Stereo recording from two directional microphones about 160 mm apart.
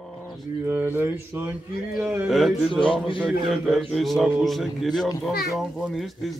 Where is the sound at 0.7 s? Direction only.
10° right (ahead or behind).